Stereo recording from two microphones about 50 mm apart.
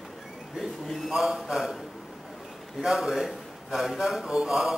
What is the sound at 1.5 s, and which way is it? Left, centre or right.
Speech, centre.